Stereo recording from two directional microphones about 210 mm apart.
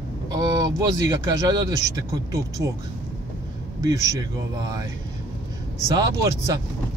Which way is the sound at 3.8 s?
15° right (ahead or behind).